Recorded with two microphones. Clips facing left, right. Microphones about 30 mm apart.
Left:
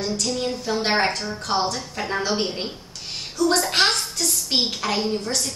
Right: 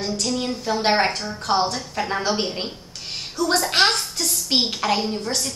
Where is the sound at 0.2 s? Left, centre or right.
Centre.